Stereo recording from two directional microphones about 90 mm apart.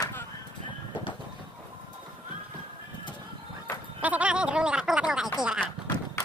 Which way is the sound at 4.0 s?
15° right (ahead or behind).